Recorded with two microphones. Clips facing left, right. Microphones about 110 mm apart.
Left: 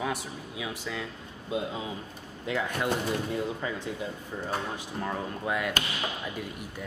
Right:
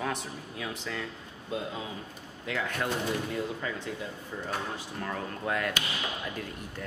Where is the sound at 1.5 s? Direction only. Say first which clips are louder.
Left 3 dB; 20° left (ahead or behind).